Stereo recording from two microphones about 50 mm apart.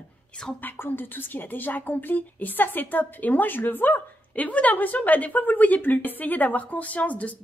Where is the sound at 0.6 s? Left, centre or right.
Left.